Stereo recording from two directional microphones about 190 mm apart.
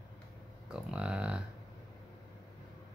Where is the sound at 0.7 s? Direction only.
5° right (ahead or behind).